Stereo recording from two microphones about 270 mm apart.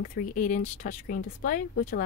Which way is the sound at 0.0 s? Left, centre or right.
Left.